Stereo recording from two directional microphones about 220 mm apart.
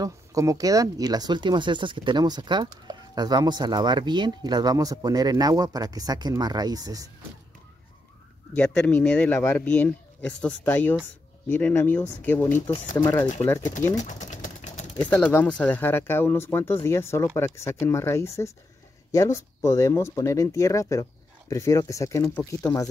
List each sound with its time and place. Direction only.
0.0 s speech: 15° right (ahead or behind)
8.5 s speech: 5° left (ahead or behind)
14.0 s vehicle: 35° left (ahead or behind)
15.0 s speech: 5° left (ahead or behind)